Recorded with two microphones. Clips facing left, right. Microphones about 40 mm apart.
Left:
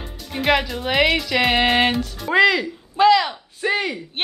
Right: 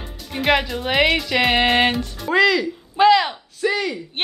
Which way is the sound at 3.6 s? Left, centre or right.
Left.